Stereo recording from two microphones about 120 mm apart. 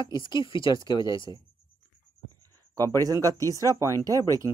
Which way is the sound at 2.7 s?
30° right (ahead or behind).